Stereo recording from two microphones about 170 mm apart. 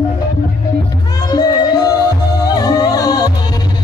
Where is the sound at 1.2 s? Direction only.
25° left (ahead or behind).